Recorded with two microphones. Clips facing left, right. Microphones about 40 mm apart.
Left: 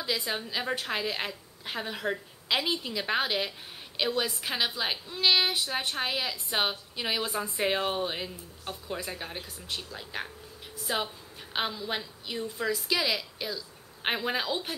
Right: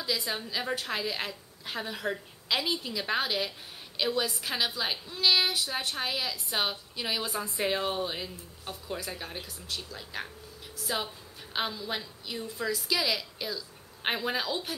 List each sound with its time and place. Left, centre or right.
0.3 s a woman's voice: centre